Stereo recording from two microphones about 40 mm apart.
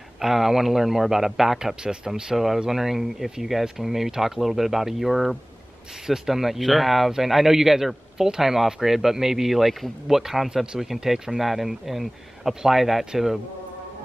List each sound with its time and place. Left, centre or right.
0.2 s a man's voice: centre
1.8 s a man's voice: centre
2.3 s a man's voice: centre